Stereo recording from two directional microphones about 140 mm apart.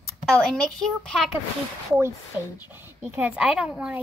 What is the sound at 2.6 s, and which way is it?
Speech, 15° right (ahead or behind).